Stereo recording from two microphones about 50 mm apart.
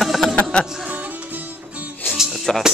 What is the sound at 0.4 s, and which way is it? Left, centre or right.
Music, left.